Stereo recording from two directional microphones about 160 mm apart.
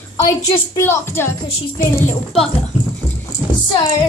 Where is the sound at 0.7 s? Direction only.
15° left (ahead or behind).